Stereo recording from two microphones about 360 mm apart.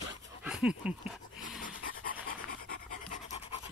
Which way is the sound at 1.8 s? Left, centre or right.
Left.